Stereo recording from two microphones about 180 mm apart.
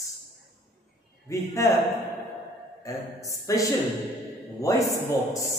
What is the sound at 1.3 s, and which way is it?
Speech, 15° left (ahead or behind).